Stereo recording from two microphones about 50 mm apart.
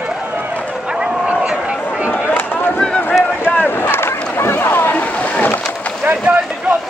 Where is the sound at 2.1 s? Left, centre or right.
Left.